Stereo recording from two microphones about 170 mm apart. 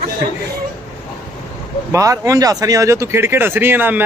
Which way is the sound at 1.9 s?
20° right (ahead or behind).